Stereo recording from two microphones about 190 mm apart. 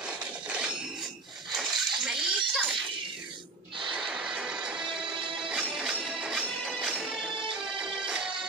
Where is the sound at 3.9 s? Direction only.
5° right (ahead or behind).